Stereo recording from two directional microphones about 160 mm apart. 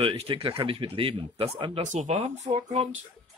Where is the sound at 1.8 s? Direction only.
50° right (ahead or behind).